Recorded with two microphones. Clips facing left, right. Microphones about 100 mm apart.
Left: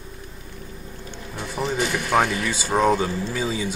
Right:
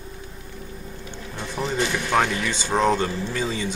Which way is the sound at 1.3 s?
5° left (ahead or behind).